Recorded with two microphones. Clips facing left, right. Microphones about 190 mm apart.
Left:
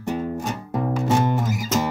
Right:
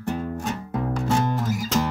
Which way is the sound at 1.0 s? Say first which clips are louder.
Left 3 dB; 20° left (ahead or behind).